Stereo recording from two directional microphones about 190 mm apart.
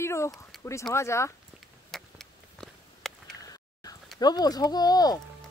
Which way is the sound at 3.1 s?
Centre (ahead or behind).